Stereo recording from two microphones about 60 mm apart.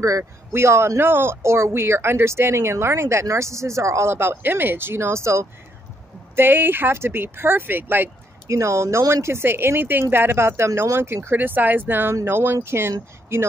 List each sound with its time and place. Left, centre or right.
0.2 s speech: right
6.3 s speech: right
8.5 s speech: right
11.2 s speech: right